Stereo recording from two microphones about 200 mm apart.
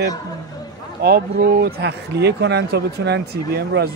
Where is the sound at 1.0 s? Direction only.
50° right (ahead or behind).